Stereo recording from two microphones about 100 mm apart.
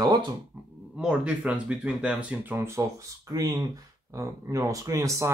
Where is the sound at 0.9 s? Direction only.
10° right (ahead or behind).